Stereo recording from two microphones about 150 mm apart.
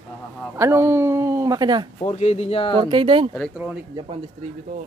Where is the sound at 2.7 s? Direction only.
35° right (ahead or behind).